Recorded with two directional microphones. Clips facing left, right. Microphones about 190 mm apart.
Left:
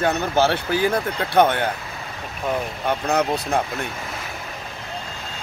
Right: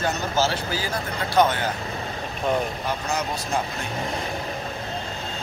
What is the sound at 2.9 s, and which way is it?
Speech, 60° left (ahead or behind).